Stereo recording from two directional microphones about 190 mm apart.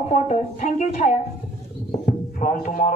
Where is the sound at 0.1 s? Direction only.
40° left (ahead or behind).